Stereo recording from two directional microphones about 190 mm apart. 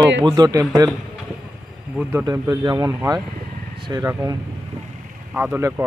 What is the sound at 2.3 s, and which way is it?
Speech, 20° right (ahead or behind).